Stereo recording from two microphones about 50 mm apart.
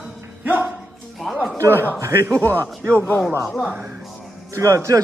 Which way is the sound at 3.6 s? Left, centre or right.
Right.